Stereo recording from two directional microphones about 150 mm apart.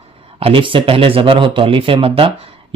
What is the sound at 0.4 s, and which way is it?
Speech, 35° right (ahead or behind).